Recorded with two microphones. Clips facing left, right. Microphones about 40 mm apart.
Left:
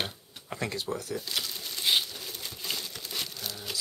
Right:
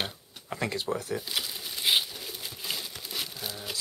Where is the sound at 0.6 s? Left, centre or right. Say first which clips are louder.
Right 2 dB; centre.